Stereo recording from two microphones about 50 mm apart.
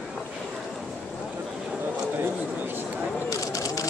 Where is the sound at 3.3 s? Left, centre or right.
Left.